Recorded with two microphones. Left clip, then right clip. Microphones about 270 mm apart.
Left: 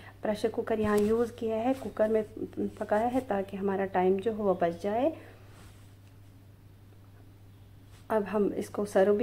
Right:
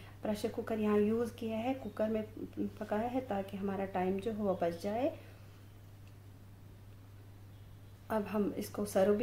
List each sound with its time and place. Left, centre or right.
0.2 s speech: centre
8.1 s speech: centre